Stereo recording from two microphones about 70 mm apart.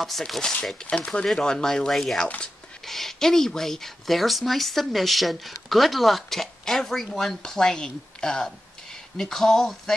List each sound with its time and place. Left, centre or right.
0.0 s speech: centre
2.2 s speech: centre
2.8 s speech: centre